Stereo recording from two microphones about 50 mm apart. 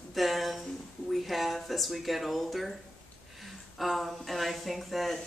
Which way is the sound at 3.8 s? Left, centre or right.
Centre.